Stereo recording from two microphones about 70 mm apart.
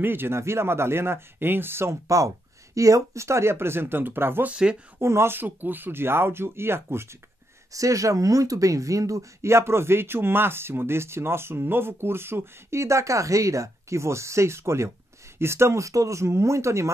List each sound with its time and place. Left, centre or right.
0.0 s speech: right
4.5 s speech: centre
4.9 s speech: right
7.7 s speech: right